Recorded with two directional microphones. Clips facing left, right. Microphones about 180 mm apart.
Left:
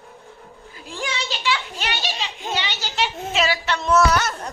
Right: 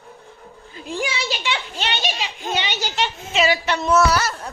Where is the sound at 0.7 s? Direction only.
20° right (ahead or behind).